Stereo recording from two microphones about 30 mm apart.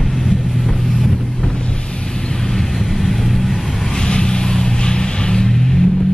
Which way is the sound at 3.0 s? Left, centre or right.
Centre.